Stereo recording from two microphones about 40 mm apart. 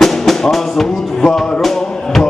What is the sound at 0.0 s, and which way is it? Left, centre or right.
Music, centre.